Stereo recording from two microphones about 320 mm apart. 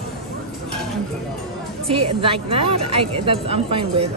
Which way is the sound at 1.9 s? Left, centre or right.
Centre.